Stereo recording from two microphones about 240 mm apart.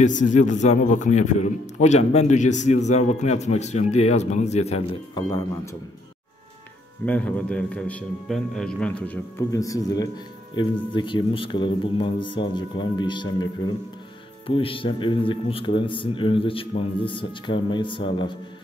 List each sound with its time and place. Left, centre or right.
0.0 s a man's voice: left
7.1 s a man's voice: centre
14.5 s a man's voice: left